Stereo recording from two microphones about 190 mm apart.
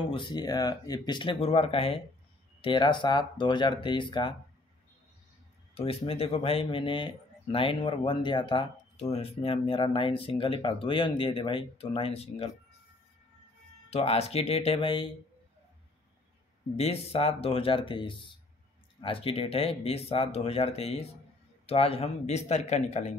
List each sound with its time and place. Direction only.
0.1 s speech: 25° left (ahead or behind)
5.8 s speech: 30° left (ahead or behind)
13.8 s speech: 30° left (ahead or behind)
16.7 s speech: 30° left (ahead or behind)